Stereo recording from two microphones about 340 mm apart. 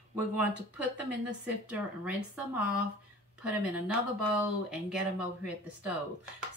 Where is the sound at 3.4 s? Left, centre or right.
Centre.